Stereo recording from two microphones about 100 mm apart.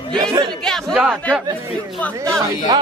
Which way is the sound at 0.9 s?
15° right (ahead or behind).